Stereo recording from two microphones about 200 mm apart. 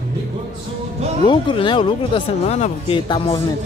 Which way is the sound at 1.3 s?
25° left (ahead or behind).